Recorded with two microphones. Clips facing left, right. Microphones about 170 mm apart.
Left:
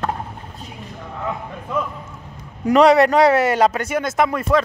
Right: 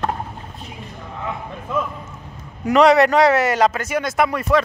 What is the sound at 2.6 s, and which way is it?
A man's voice, 35° left (ahead or behind).